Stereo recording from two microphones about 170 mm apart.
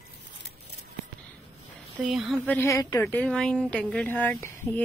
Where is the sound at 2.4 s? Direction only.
15° left (ahead or behind).